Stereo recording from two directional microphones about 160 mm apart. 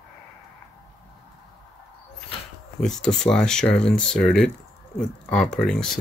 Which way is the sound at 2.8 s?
5° left (ahead or behind).